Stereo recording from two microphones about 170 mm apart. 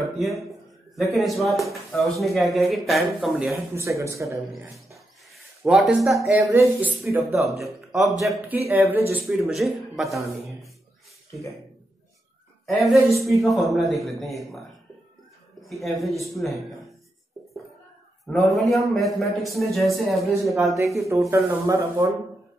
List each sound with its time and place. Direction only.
0.2 s speech: centre (ahead or behind)
3.7 s speech: 15° right (ahead or behind)
5.6 s speech: 5° right (ahead or behind)
6.2 s speech: 15° right (ahead or behind)
7.4 s speech: centre (ahead or behind)
8.6 s speech: 15° right (ahead or behind)
9.1 s a man's voice: centre (ahead or behind)
13.1 s speech: centre (ahead or behind)
15.6 s speech: centre (ahead or behind)
18.2 s speech: centre (ahead or behind)
20.5 s speech: 20° right (ahead or behind)